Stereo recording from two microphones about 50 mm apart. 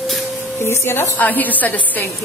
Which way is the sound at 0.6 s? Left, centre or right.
Left.